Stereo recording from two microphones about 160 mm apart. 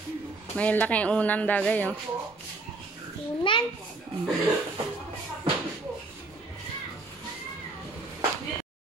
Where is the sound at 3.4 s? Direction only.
30° left (ahead or behind).